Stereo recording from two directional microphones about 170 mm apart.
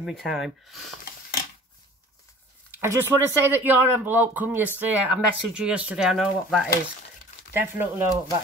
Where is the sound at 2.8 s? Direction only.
15° right (ahead or behind).